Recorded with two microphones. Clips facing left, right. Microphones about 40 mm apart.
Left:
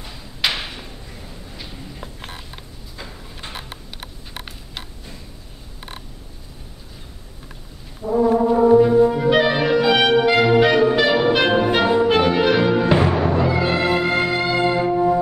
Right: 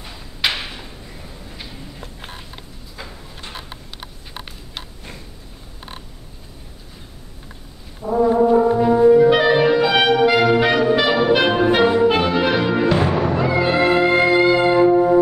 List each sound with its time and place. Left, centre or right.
0.0 s a sound: centre
8.0 s brass instrument: centre
9.0 s clarinet: centre
9.8 s music: centre
10.3 s brass instrument: centre
11.1 s music: centre
12.8 s music: centre
13.1 s music: centre
13.7 s music: centre